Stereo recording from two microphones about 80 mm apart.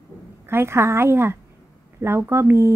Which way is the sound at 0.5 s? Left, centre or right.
Right.